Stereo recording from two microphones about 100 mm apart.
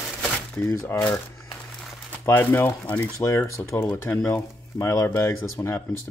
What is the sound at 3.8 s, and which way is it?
Speech, 20° left (ahead or behind).